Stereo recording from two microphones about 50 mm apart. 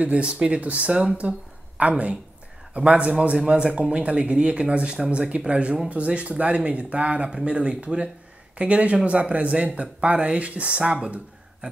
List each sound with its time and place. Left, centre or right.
0.0 s speech: right